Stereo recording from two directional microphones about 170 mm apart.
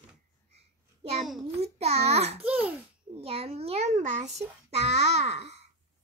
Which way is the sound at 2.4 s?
10° right (ahead or behind).